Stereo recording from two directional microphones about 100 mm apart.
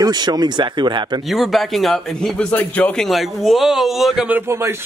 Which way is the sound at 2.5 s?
20° left (ahead or behind).